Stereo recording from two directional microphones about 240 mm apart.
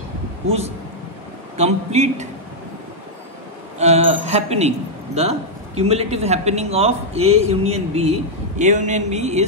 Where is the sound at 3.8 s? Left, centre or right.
Right.